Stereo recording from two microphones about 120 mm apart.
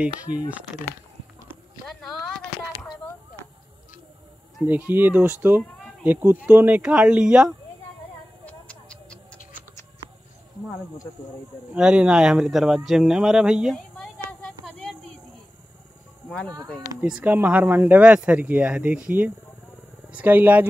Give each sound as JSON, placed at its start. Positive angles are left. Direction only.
{"t": 0.5, "sound": "speech", "side_deg": -10}
{"t": 1.9, "sound": "a sound", "side_deg": 0}
{"t": 4.6, "sound": "speech", "side_deg": -15}
{"t": 8.5, "sound": "a sound", "side_deg": 10}
{"t": 11.7, "sound": "speech", "side_deg": -5}
{"t": 16.3, "sound": "speech", "side_deg": 10}
{"t": 17.0, "sound": "speech", "side_deg": -10}